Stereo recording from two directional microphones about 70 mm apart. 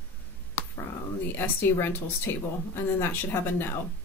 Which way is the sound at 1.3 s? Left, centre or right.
Left.